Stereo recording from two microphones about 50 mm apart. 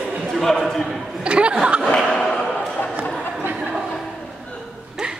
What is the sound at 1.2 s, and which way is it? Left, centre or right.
Chuckle, right.